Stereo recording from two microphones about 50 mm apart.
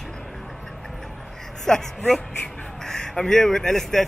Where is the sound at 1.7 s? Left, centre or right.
Centre.